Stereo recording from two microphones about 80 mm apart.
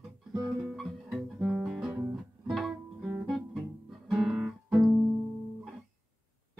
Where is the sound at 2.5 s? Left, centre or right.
Centre.